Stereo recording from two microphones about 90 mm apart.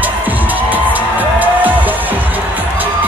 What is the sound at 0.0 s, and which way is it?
Music, 20° right (ahead or behind).